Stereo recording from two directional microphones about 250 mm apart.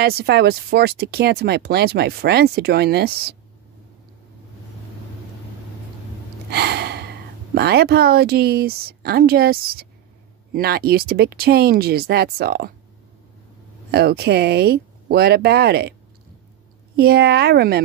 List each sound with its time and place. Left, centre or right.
0.0 s speech: right
6.5 s gasp: right
7.5 s speech: right
13.9 s speech: right
16.9 s speech: right